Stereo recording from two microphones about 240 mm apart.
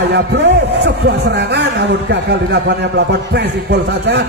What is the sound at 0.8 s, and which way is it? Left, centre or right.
A man's voice, right.